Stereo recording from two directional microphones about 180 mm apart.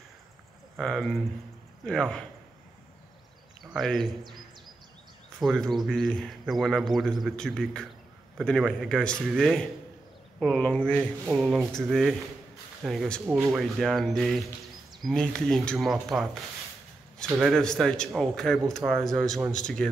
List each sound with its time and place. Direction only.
0.7 s speech: centre (ahead or behind)
3.7 s speech: centre (ahead or behind)
5.4 s speech: centre (ahead or behind)
17.3 s speech: centre (ahead or behind)